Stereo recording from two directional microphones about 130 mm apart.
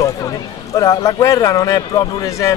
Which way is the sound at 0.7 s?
25° left (ahead or behind).